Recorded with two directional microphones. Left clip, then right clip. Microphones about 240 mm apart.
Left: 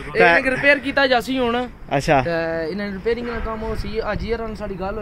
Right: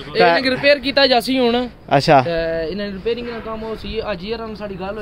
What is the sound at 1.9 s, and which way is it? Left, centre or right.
Speech, centre.